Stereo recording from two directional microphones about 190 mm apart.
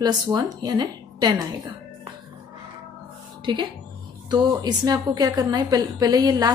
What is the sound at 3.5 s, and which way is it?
A woman's voice, 25° right (ahead or behind).